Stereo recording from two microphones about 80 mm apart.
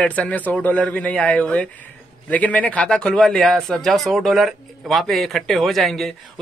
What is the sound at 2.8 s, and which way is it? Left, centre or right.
Speech, centre.